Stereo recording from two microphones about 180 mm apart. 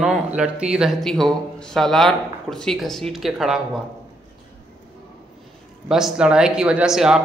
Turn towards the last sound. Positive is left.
turn(degrees=-5)  # may be behind; listen again after turning